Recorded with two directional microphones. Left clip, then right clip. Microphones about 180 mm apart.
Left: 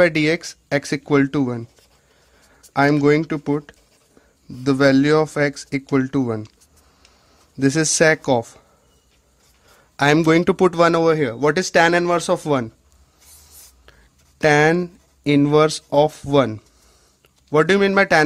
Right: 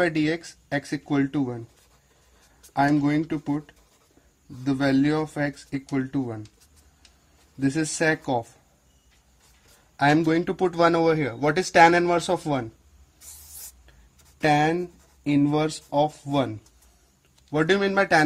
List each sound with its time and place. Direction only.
0.0 s speech: 50° left (ahead or behind)
2.7 s speech: 55° left (ahead or behind)
7.5 s speech: 50° left (ahead or behind)
9.9 s speech: 50° left (ahead or behind)
14.4 s speech: 45° left (ahead or behind)